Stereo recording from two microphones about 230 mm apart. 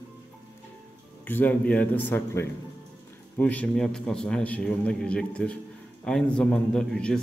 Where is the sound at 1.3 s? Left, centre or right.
Centre.